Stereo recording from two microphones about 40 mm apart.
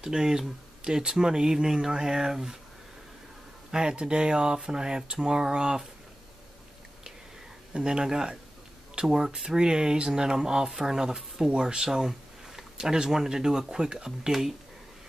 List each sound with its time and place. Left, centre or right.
0.0 s speech: centre
3.7 s speech: right
7.7 s speech: centre